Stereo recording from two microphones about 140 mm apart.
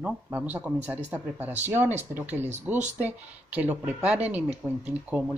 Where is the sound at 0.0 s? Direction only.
10° right (ahead or behind).